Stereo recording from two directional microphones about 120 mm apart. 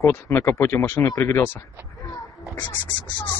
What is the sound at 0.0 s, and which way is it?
Speech, 20° left (ahead or behind).